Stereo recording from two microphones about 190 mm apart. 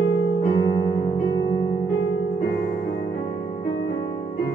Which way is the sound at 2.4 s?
55° left (ahead or behind).